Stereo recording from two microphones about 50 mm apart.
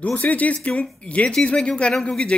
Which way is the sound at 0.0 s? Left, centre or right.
Left.